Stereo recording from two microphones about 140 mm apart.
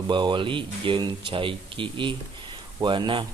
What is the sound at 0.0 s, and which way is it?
Speech, 35° right (ahead or behind).